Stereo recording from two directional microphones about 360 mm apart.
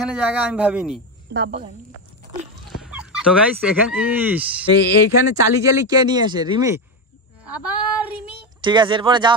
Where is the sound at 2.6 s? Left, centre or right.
Centre.